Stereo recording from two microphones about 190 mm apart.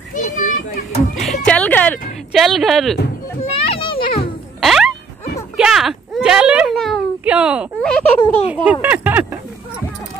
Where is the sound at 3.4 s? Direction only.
30° left (ahead or behind).